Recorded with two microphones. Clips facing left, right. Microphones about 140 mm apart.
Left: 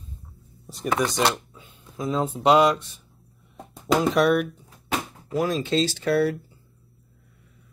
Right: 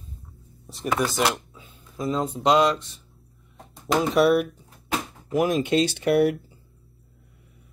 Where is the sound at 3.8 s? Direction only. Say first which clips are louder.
Even; centre (ahead or behind).